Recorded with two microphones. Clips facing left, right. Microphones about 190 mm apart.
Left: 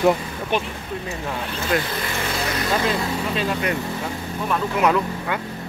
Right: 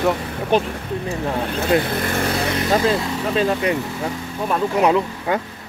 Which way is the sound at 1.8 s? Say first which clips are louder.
Right 5 dB; 55° right (ahead or behind).